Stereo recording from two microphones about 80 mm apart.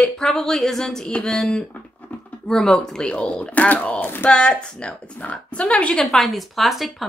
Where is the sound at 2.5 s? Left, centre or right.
Centre; by 4.3 s left.